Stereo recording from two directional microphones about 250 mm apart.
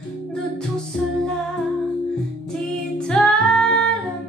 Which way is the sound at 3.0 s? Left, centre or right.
Centre.